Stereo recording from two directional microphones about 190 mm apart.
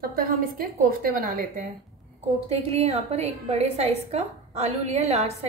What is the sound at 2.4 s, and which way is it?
A woman's voice, 30° right (ahead or behind).